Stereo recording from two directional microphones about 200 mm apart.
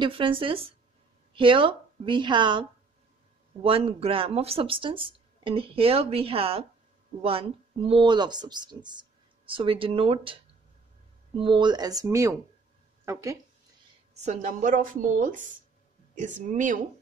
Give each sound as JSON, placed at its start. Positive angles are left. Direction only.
{"t": 0.0, "sound": "a woman's voice", "side_deg": -25}
{"t": 3.6, "sound": "speech", "side_deg": -25}
{"t": 14.1, "sound": "a woman's voice", "side_deg": -35}